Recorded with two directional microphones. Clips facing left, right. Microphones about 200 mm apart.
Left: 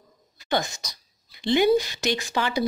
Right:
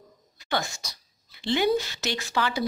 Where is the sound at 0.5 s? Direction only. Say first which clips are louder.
Left 3 dB; 20° left (ahead or behind).